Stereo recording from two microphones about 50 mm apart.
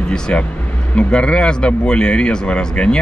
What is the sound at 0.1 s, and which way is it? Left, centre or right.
Speech, centre.